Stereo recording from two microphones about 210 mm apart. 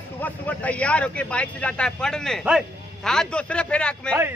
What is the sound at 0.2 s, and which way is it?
Speech, 5° left (ahead or behind).